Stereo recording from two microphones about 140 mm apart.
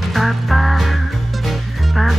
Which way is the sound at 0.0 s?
Centre (ahead or behind).